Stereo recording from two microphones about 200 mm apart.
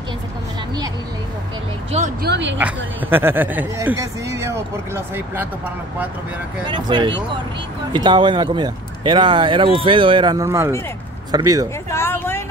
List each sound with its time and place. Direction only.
1.9 s speech: 35° right (ahead or behind)
2.2 s speech: 60° right (ahead or behind)
2.6 s speech: 10° right (ahead or behind)
6.6 s speech: 25° right (ahead or behind)
11.9 s a sound: 10° left (ahead or behind)